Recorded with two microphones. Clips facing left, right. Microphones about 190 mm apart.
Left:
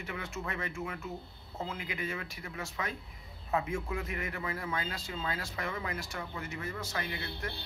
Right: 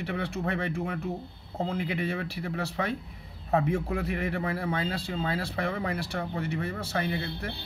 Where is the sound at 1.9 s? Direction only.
65° right (ahead or behind).